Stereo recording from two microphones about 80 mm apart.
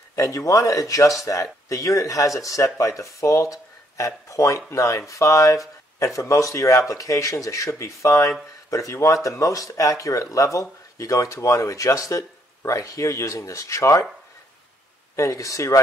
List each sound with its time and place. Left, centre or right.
0.1 s speech: left
15.1 s speech: left